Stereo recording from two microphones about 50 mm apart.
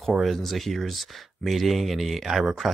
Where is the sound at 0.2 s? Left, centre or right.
Centre.